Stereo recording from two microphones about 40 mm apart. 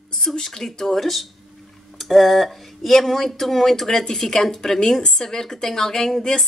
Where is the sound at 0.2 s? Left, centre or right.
Centre.